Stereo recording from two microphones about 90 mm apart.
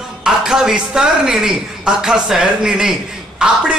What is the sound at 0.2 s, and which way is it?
A man's voice, 5° right (ahead or behind).